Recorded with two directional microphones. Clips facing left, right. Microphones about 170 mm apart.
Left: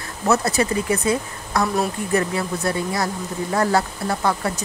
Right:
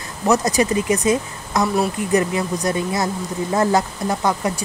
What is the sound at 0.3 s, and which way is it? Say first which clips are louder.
Speech: right 2 dB; 15° right (ahead or behind).